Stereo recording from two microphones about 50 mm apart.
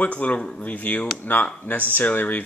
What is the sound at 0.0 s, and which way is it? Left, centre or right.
Speech, left.